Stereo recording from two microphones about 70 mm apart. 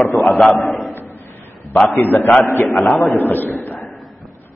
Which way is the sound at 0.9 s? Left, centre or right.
Left.